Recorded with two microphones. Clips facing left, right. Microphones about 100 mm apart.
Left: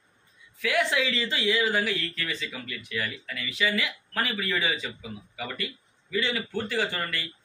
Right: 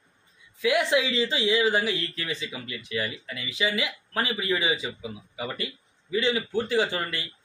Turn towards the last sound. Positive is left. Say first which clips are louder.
# right 3 dB
turn(degrees=-20)  # may be behind; listen again after turning